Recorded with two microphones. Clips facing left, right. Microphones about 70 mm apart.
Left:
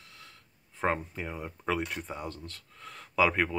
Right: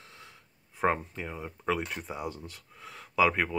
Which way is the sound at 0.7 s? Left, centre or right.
Centre.